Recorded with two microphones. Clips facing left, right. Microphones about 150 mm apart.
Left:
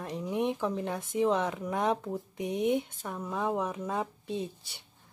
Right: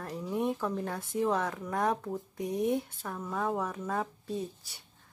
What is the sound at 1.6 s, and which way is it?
Speech, 20° left (ahead or behind).